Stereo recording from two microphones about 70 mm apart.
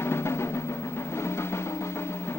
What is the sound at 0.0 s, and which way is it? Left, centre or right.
Music, left.